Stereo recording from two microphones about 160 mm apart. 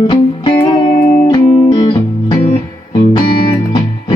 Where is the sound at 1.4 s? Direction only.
40° left (ahead or behind).